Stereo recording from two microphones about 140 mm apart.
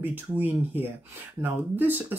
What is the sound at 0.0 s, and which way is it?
Speech, 10° right (ahead or behind).